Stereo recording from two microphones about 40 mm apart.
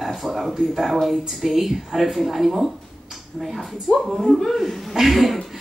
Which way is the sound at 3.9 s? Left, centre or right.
Left.